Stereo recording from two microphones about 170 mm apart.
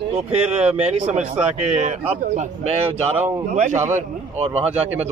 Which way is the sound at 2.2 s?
45° right (ahead or behind).